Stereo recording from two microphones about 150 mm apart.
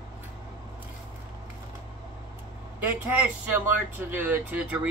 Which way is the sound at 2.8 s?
10° right (ahead or behind).